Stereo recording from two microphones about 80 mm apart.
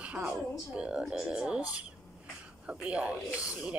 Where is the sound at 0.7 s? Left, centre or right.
Centre.